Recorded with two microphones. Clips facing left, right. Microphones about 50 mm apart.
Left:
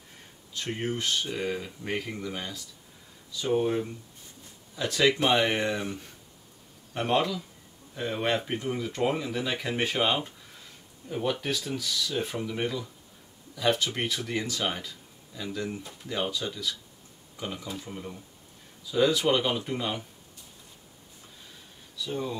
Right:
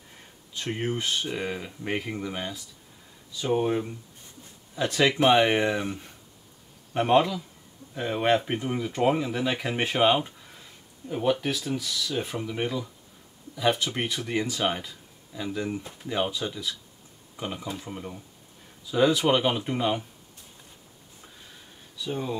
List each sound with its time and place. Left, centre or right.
0.6 s speech: centre
21.9 s speech: right